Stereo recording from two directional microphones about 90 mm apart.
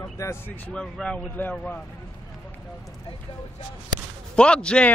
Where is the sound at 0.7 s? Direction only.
10° left (ahead or behind).